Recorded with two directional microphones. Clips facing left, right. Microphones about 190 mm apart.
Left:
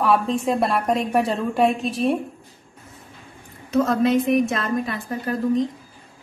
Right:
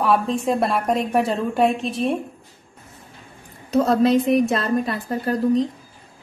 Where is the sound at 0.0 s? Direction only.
Centre (ahead or behind).